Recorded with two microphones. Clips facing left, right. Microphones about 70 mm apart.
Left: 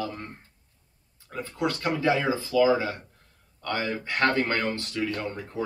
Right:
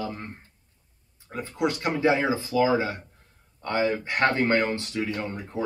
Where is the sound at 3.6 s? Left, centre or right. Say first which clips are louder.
Right 4 dB; right.